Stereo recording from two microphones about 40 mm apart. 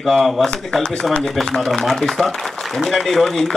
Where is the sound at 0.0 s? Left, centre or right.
Centre.